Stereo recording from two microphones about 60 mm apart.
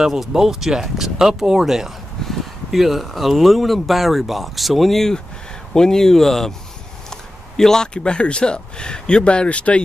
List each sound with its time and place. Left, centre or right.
0.0 s speech: centre; by 9.8 s left